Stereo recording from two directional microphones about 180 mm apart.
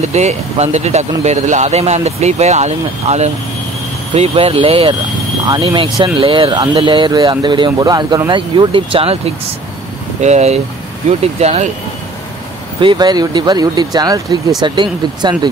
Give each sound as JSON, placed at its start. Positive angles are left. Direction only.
{"t": 0.1, "sound": "speech", "side_deg": -40}
{"t": 12.8, "sound": "speech", "side_deg": -25}